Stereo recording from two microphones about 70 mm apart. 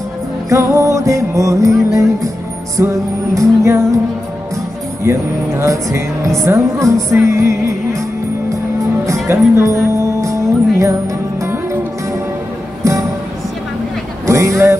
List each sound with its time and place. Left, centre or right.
0.5 s music: right
5.0 s music: right
9.3 s speech: right
9.9 s music: right
14.2 s speech: right